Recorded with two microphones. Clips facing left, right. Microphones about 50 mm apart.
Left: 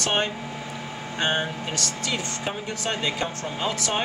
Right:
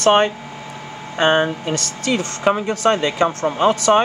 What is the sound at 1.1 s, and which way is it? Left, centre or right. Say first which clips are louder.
Speech: right 10 dB; right.